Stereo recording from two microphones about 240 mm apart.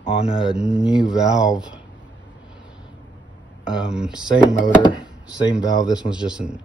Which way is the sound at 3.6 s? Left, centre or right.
Centre.